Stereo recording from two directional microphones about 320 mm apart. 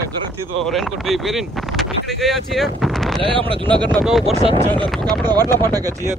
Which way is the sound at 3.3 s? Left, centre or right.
Centre.